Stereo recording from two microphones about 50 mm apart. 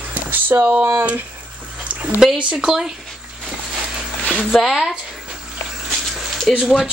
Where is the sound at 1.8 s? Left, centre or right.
Right.